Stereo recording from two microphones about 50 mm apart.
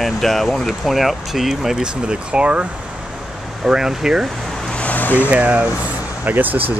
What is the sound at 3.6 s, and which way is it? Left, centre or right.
Speech, centre.